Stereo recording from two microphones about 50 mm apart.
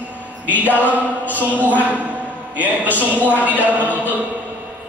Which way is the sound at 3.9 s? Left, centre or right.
Left.